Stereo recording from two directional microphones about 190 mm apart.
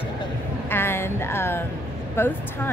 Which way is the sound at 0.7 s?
10° left (ahead or behind).